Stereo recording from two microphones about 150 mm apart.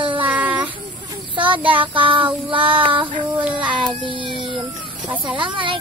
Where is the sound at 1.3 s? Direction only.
35° right (ahead or behind).